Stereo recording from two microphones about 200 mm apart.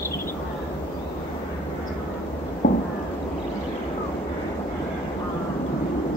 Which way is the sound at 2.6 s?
45° left (ahead or behind).